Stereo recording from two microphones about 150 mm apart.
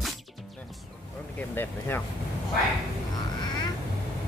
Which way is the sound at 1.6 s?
15° left (ahead or behind).